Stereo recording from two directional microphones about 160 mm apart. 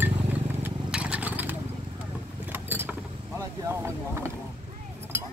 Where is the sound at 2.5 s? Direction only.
10° right (ahead or behind).